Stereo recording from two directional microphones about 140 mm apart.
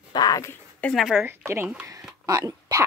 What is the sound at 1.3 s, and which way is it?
Speech, 15° right (ahead or behind).